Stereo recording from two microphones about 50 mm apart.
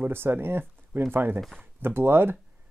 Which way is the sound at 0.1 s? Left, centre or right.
Right.